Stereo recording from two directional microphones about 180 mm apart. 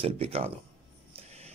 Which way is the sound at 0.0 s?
35° right (ahead or behind).